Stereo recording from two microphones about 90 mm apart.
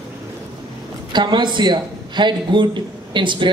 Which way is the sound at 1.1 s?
55° right (ahead or behind).